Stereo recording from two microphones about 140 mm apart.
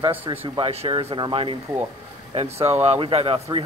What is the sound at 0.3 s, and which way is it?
Speech, 40° right (ahead or behind).